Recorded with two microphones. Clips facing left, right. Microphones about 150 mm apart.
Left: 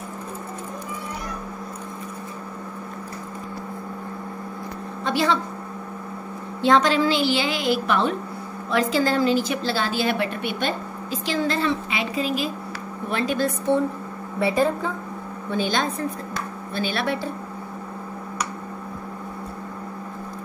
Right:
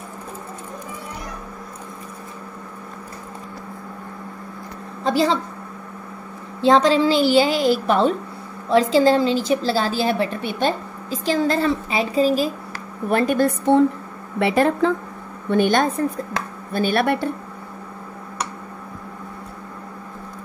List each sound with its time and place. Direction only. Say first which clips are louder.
5.0 s a woman's voice: right 3 dB; 30° right (ahead or behind)
6.6 s a woman's voice: right 3 dB; 30° right (ahead or behind)
13.1 s a woman's voice: right 6 dB; 50° right (ahead or behind)
14.4 s a woman's voice: right 4 dB; 75° right (ahead or behind)
15.5 s a woman's voice: right 7 dB; 55° right (ahead or behind)